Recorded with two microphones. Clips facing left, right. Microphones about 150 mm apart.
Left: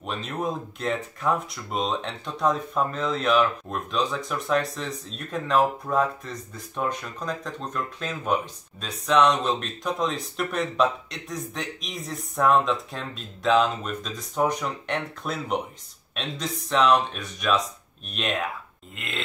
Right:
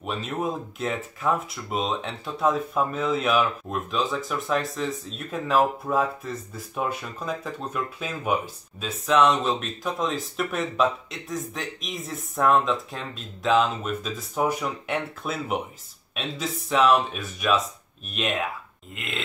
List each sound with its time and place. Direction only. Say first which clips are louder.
0.0 s speech: right 1 dB; 5° right (ahead or behind)